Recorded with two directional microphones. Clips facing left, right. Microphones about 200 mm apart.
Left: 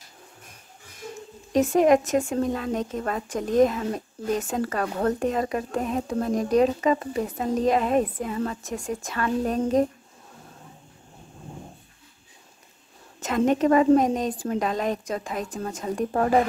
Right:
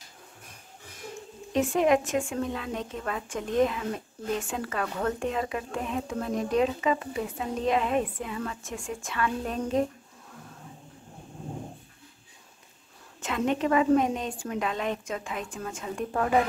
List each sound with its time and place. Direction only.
1.5 s speech: 40° left (ahead or behind)
13.2 s speech: 40° left (ahead or behind)